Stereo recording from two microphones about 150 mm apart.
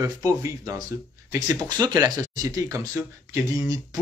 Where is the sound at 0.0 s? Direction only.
20° right (ahead or behind).